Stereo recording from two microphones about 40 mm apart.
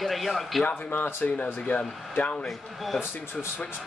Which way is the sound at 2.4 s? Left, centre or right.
Centre.